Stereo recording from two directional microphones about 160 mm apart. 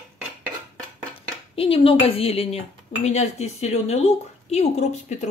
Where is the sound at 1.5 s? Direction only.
35° left (ahead or behind).